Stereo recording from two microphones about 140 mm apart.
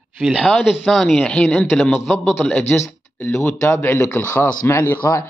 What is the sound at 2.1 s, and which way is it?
A man's voice, 15° left (ahead or behind).